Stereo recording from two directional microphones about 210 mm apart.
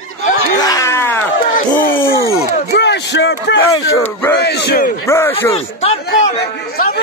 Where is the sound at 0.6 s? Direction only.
15° left (ahead or behind).